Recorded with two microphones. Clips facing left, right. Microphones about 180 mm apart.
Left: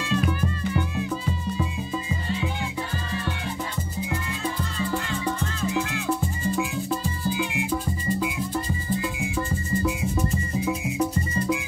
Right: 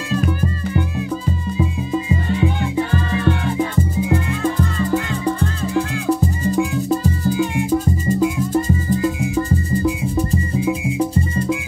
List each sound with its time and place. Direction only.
2.2 s music: 65° right (ahead or behind); by 4.8 s 50° right (ahead or behind)
5.2 s music: 35° right (ahead or behind)
9.8 s music: 35° right (ahead or behind)